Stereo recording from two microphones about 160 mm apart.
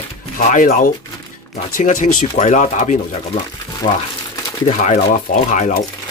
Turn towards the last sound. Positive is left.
turn(degrees=55)  # may be behind; listen again after turning